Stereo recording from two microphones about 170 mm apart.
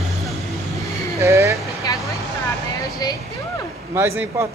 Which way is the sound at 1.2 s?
20° right (ahead or behind).